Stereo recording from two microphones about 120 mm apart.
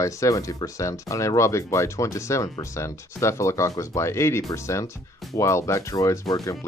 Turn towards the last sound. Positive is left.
turn(degrees=30)  # may be behind; listen again after turning